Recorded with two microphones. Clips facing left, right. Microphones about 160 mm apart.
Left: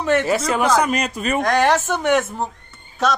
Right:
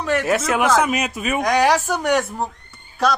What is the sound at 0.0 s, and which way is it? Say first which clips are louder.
A man's voice: left 2 dB; centre (ahead or behind).